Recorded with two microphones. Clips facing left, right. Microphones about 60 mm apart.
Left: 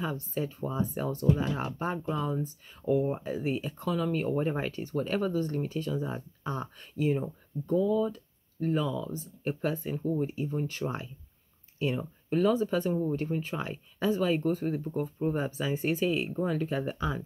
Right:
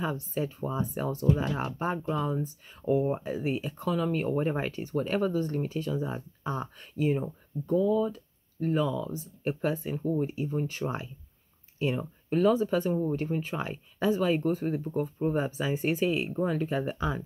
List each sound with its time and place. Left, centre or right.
0.0 s speech: centre